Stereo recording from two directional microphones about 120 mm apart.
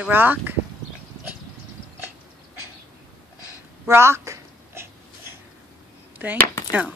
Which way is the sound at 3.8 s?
20° right (ahead or behind).